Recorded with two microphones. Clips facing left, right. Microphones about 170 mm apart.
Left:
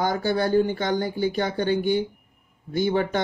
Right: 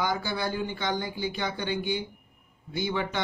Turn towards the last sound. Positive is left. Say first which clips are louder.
# left 7 dB
turn(degrees=45)  # may be behind; listen again after turning